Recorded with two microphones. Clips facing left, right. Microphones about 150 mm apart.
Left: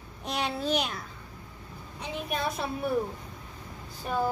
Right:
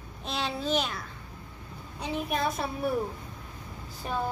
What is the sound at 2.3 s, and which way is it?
Speech, centre (ahead or behind).